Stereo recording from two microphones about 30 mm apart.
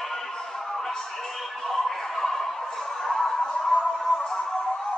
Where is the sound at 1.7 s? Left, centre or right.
Centre.